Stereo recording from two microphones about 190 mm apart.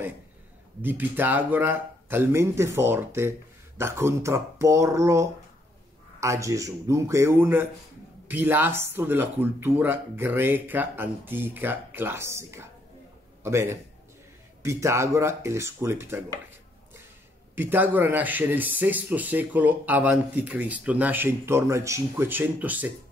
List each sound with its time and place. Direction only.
0.8 s a man's voice: 10° right (ahead or behind)
17.6 s speech: 10° right (ahead or behind)